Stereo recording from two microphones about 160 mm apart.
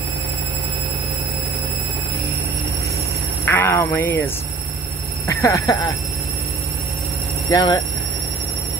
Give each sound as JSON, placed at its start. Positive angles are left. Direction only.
{"t": 3.4, "sound": "a sound", "side_deg": 15}
{"t": 5.2, "sound": "speech", "side_deg": 20}
{"t": 7.5, "sound": "speech", "side_deg": 25}